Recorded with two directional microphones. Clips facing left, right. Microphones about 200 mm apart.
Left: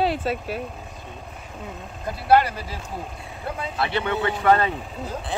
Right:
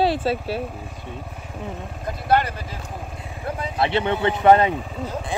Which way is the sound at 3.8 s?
25° right (ahead or behind).